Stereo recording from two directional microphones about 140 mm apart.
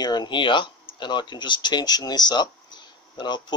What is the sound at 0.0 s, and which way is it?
Speech, 30° left (ahead or behind).